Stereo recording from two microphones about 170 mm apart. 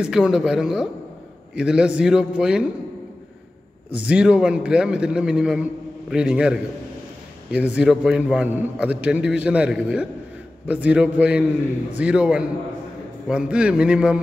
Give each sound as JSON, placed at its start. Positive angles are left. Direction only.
{"t": 0.0, "sound": "a man's voice", "side_deg": -5}
{"t": 3.9, "sound": "a man's voice", "side_deg": -5}